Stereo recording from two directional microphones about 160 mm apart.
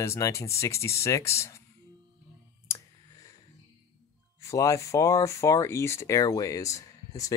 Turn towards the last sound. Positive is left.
turn(degrees=20)  # may be behind; listen again after turning